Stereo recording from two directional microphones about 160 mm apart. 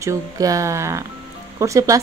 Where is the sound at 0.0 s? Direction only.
20° right (ahead or behind).